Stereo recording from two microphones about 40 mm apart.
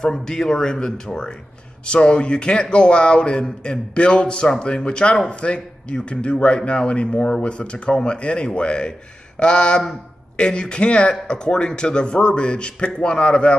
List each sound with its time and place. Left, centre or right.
0.0 s a man's voice: centre